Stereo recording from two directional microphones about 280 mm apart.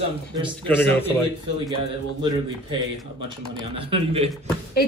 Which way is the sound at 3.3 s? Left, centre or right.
Centre.